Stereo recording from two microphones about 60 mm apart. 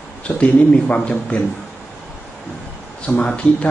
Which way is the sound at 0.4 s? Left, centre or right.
Left.